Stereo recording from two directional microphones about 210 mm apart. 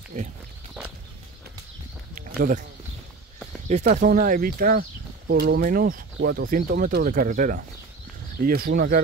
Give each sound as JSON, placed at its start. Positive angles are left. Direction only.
{"t": 0.1, "sound": "speech", "side_deg": -40}
{"t": 2.1, "sound": "a sound", "side_deg": -40}
{"t": 3.6, "sound": "speech", "side_deg": -35}